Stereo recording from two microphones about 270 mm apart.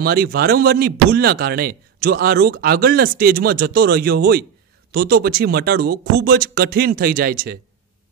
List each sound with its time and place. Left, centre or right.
0.0 s speech: right